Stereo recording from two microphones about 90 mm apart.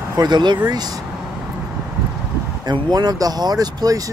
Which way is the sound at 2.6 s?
45° right (ahead or behind).